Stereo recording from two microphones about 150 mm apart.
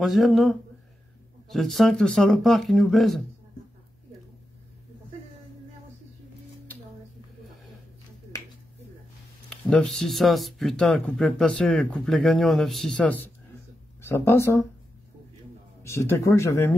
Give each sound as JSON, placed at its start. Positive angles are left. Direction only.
{"t": 0.0, "sound": "speech", "side_deg": 0}
{"t": 9.5, "sound": "speech", "side_deg": 5}
{"t": 15.8, "sound": "speech", "side_deg": 20}